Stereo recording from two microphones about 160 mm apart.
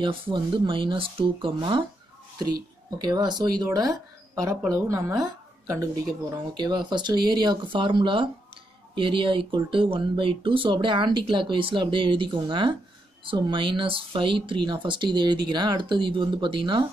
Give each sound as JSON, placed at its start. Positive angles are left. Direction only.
{"t": 0.0, "sound": "a woman's voice", "side_deg": -30}